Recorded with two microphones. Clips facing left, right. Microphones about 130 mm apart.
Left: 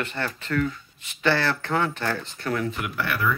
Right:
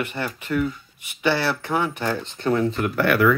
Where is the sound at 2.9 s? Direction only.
60° right (ahead or behind).